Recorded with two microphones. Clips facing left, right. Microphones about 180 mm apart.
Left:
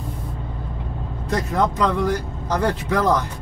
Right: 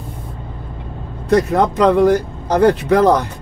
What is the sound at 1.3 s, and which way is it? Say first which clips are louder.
Speech: right 8 dB; 65° right (ahead or behind).